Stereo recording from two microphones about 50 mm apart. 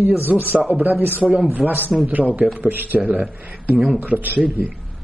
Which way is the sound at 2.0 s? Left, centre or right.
Right.